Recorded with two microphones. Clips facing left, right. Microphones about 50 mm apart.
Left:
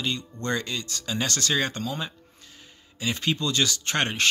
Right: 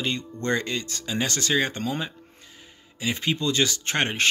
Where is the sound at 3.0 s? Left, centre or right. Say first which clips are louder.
Right 1 dB; right.